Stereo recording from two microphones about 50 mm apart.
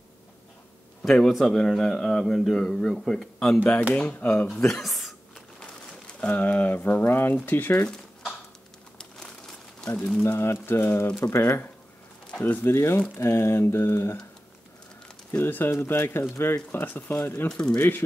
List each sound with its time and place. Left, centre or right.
1.4 s a man's voice: centre
3.9 s speech: left
4.6 s a sound: centre
5.6 s a sound: left
6.4 s speech: left
8.9 s crumpling: centre
10.2 s mantra: left
11.1 s mantra: left
11.4 s speech: left
12.7 s mantra: left
15.3 s speech: left
16.8 s speech: left
17.5 s a man's voice: centre
17.7 s speech: left